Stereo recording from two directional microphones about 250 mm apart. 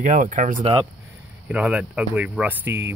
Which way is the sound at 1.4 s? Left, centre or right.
Centre.